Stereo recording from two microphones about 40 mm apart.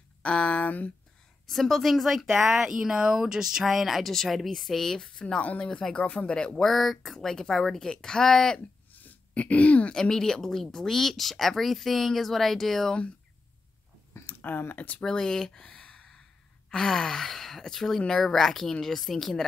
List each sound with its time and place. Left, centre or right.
0.2 s speech: left
1.5 s speech: centre
2.3 s speech: centre
4.0 s speech: centre; by 6.3 s left
6.5 s speech: centre
8.9 s a sound: left
9.4 s speech: left
9.9 s speech: centre
14.2 s a sound: left
15.0 s speech: centre
15.6 s a sound: left
16.7 s speech: centre